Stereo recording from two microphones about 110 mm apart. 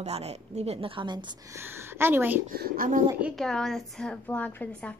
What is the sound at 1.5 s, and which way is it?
Speech, 25° right (ahead or behind).